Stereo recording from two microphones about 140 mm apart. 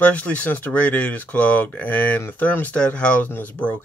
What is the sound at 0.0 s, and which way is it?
Speech, 10° left (ahead or behind).